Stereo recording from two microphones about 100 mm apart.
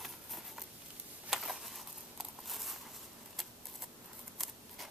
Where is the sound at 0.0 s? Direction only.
Centre (ahead or behind).